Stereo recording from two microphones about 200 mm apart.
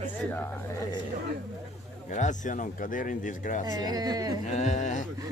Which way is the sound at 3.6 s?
20° right (ahead or behind).